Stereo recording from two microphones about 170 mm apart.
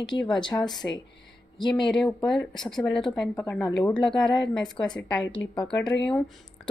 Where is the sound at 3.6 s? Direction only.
25° left (ahead or behind).